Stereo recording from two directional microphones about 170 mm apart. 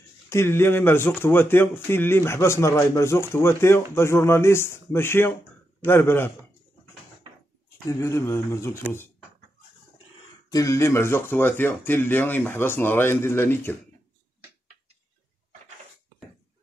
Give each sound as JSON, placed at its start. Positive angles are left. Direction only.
{"t": 0.3, "sound": "speech", "side_deg": 15}
{"t": 7.9, "sound": "speech", "side_deg": 15}
{"t": 10.5, "sound": "speech", "side_deg": 20}